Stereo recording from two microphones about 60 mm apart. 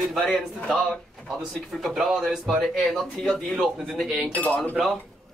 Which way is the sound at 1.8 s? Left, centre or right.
Centre.